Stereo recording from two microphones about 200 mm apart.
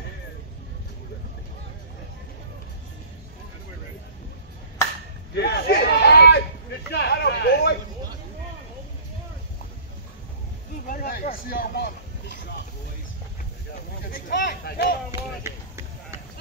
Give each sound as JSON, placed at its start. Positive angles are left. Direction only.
{"t": 5.3, "sound": "speech", "side_deg": 50}
{"t": 6.9, "sound": "a sound", "side_deg": 55}
{"t": 10.9, "sound": "speech", "side_deg": 45}
{"t": 14.1, "sound": "speech", "side_deg": 45}
{"t": 14.5, "sound": "speech", "side_deg": 55}
{"t": 15.0, "sound": "a sound", "side_deg": -15}